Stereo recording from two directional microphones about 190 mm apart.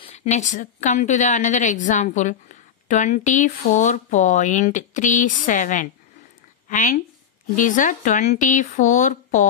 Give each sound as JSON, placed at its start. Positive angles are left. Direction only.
{"t": 0.0, "sound": "a woman's voice", "side_deg": 35}